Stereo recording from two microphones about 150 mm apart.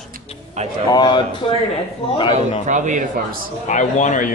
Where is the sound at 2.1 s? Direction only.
35° left (ahead or behind).